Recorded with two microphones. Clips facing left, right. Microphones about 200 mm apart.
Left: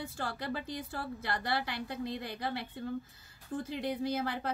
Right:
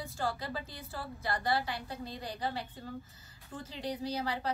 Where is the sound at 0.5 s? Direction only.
60° left (ahead or behind).